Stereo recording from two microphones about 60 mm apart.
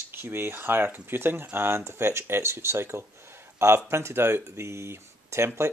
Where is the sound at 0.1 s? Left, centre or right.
Right.